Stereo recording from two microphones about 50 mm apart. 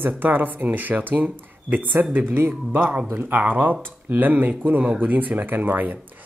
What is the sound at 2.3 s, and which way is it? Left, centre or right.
Speech, right.